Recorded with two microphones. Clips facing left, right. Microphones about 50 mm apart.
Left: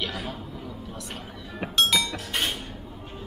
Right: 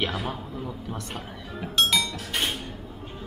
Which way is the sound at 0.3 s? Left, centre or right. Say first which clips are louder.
Right 3 dB; centre.